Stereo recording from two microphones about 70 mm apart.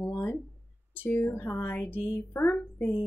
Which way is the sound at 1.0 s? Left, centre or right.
Left.